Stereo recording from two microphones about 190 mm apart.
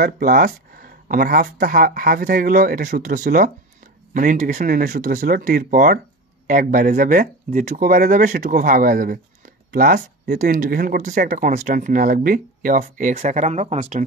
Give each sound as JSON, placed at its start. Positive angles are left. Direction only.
{"t": 0.0, "sound": "speech", "side_deg": -50}